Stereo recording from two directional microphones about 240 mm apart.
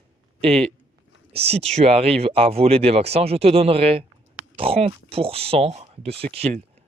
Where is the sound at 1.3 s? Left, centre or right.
Right.